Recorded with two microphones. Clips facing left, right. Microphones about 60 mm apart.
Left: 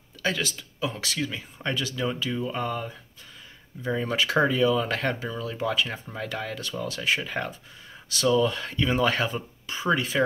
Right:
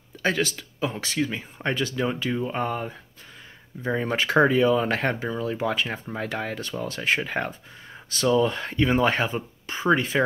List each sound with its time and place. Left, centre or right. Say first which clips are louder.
0.2 s speech: right 4 dB; right